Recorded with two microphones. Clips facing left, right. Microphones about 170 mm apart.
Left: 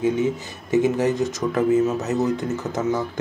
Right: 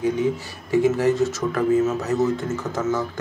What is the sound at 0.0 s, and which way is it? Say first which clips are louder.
Speech: left 1 dB; 20° left (ahead or behind).